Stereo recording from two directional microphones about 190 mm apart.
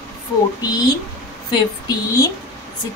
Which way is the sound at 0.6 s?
20° left (ahead or behind).